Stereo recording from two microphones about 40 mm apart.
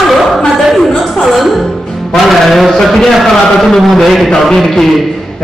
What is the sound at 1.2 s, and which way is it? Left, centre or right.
Music, centre.